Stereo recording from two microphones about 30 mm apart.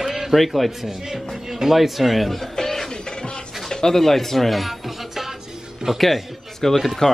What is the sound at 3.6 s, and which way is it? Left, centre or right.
Music, centre.